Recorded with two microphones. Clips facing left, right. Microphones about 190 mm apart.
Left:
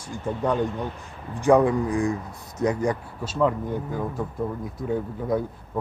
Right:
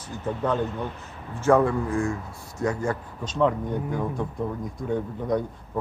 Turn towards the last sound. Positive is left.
turn(degrees=5)  # may be behind; listen again after turning